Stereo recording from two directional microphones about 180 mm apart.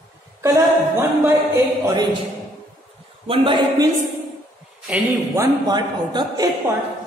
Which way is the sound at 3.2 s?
30° right (ahead or behind).